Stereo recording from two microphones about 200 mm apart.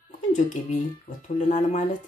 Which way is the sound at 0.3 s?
40° left (ahead or behind).